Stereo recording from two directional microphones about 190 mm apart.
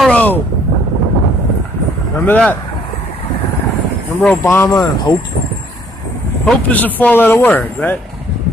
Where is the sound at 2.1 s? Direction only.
5° left (ahead or behind).